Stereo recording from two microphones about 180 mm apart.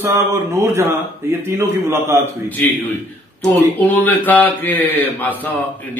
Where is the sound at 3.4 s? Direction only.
10° left (ahead or behind).